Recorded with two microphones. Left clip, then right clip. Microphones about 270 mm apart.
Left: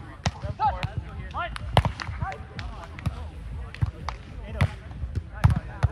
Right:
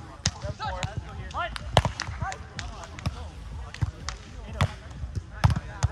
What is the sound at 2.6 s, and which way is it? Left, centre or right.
Music, right.